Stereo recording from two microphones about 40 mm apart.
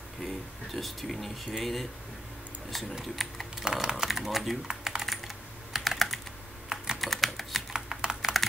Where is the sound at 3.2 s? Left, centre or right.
Centre.